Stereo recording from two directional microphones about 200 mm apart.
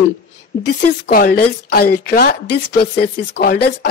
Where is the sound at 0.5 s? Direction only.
50° left (ahead or behind).